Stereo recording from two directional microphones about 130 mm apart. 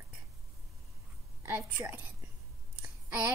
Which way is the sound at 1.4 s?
10° right (ahead or behind).